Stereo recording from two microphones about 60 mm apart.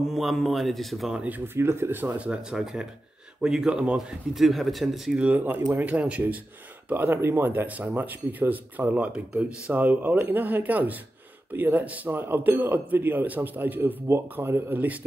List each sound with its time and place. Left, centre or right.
0.1 s speech: centre
1.4 s a man's voice: right
2.1 s speech: right
2.5 s speech: centre
4.4 s speech: centre
5.1 s speech: right
6.9 s a man's voice: right
7.6 s a man's voice: right